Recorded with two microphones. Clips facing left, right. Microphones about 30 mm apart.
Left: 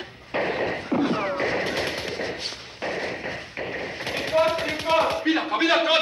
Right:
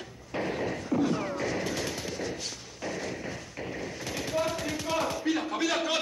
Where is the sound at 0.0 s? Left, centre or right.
Left.